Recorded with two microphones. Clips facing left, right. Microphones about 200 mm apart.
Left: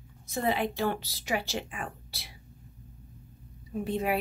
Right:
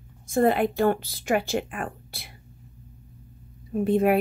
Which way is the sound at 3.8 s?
55° right (ahead or behind).